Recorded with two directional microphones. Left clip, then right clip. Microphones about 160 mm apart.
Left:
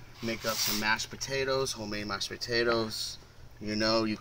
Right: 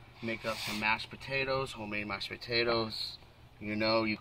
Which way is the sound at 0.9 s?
10° left (ahead or behind).